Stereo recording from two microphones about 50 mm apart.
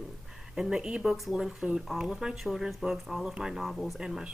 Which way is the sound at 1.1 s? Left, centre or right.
Centre.